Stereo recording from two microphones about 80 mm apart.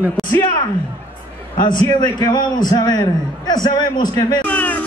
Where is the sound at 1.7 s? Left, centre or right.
Left.